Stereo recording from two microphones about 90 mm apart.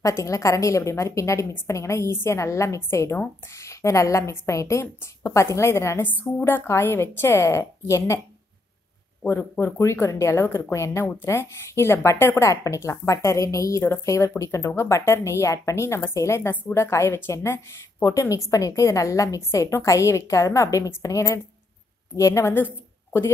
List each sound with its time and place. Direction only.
0.0 s a woman's voice: 35° left (ahead or behind)
9.2 s a woman's voice: 20° left (ahead or behind)